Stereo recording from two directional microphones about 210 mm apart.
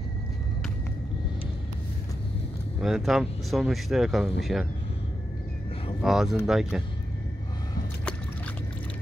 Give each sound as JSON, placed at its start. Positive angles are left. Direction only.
{"t": 2.8, "sound": "speech", "side_deg": 0}
{"t": 6.0, "sound": "speech", "side_deg": 0}